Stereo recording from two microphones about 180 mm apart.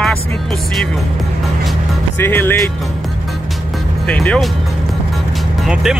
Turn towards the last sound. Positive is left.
turn(degrees=-5)  # may be behind; listen again after turning